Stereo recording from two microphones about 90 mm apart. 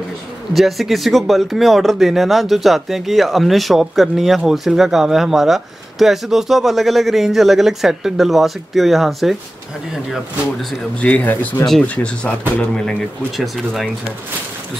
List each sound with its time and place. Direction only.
0.5 s speech: centre (ahead or behind)
11.0 s speech: 15° left (ahead or behind)